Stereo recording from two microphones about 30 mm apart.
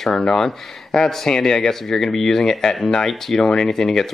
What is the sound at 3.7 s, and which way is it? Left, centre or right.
Speech, centre.